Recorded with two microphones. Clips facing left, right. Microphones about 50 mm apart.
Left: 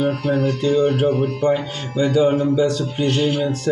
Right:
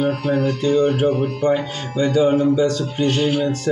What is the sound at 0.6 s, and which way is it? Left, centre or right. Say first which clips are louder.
Speech: right 1 dB; centre.